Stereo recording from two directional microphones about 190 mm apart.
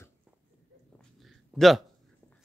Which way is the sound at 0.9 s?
Centre (ahead or behind).